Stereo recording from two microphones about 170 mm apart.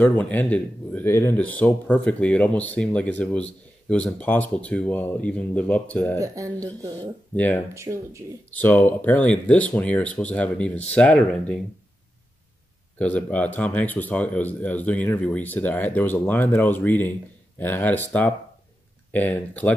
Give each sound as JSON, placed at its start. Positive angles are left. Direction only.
{"t": 0.0, "sound": "speech", "side_deg": 10}
{"t": 6.1, "sound": "speech", "side_deg": -20}
{"t": 7.0, "sound": "speech", "side_deg": 10}
{"t": 7.7, "sound": "speech", "side_deg": -15}
{"t": 8.5, "sound": "speech", "side_deg": 10}
{"t": 13.0, "sound": "speech", "side_deg": 10}